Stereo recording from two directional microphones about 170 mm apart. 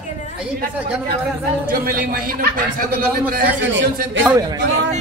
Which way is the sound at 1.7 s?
55° right (ahead or behind).